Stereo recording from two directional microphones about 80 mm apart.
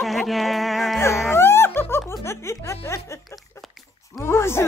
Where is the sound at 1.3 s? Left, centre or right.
Left.